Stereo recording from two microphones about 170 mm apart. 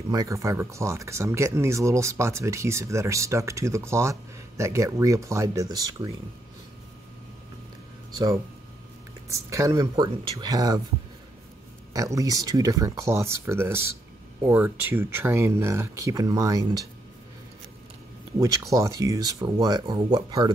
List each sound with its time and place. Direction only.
0.1 s speech: 20° right (ahead or behind)
8.1 s speech: 20° right (ahead or behind)
11.9 s speech: 20° right (ahead or behind)
18.4 s speech: 20° right (ahead or behind)